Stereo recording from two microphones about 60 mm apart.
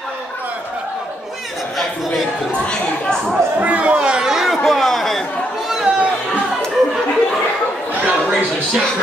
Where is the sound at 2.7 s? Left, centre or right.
Centre.